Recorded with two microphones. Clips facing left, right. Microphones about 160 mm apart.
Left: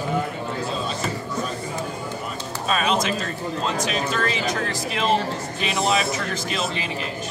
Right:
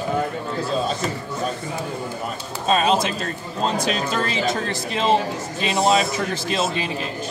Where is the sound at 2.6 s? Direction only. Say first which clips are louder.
Right 3 dB; 30° right (ahead or behind).